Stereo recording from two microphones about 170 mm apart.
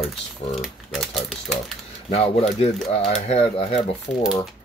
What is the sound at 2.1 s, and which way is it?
Speech, 40° left (ahead or behind).